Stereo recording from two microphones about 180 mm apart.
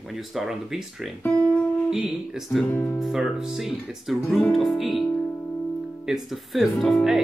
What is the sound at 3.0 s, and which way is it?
Speech, centre (ahead or behind).